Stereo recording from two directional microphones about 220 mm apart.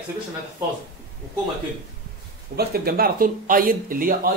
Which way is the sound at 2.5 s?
45° right (ahead or behind).